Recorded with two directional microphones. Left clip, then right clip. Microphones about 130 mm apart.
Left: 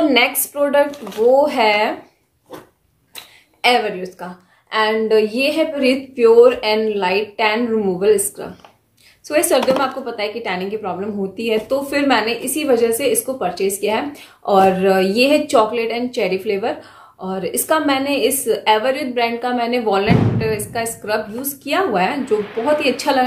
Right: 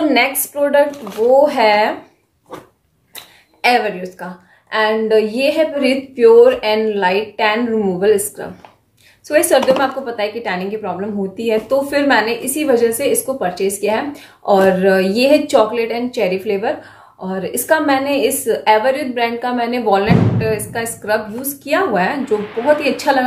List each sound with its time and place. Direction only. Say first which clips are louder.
0.0 s a woman's voice: even; 30° left (ahead or behind)
3.2 s a woman's voice: right 2 dB; 15° left (ahead or behind)
9.3 s a woman's voice: right 3 dB; 15° left (ahead or behind)